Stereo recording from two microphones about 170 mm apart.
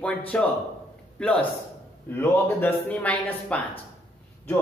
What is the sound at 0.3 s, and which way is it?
Speech, 5° left (ahead or behind).